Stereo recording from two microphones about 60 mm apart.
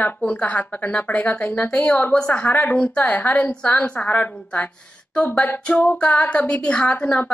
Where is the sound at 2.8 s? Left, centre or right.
Centre.